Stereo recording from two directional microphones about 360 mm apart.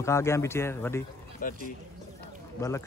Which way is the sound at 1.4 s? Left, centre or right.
Left.